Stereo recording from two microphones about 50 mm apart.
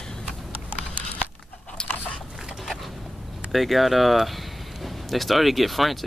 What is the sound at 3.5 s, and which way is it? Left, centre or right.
Speech, centre.